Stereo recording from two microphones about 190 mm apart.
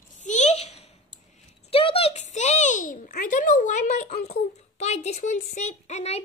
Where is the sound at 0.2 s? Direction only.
35° left (ahead or behind).